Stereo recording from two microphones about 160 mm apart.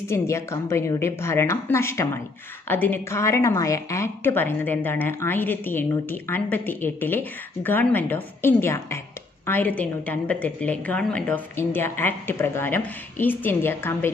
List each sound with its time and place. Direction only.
0.1 s a woman's voice: 15° left (ahead or behind)